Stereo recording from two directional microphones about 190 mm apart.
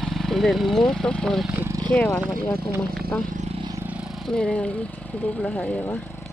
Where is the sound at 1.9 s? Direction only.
5° left (ahead or behind).